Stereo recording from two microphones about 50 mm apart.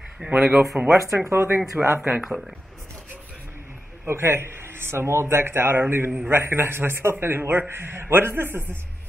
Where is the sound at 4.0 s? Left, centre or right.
Right.